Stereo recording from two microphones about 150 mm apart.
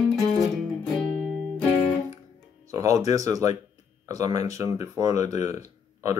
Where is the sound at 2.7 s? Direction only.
20° right (ahead or behind).